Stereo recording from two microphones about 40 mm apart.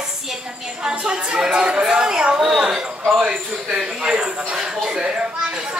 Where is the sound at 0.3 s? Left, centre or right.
Centre.